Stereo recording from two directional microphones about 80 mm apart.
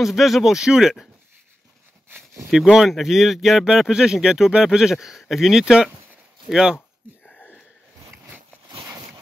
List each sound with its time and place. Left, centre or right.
0.0 s speech: centre
2.0 s a sound: right
2.5 s speech: centre